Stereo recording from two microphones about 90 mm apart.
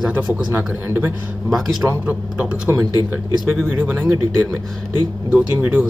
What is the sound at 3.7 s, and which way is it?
Speech, 20° right (ahead or behind).